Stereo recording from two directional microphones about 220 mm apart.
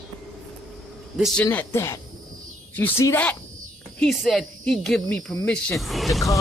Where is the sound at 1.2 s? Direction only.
5° left (ahead or behind).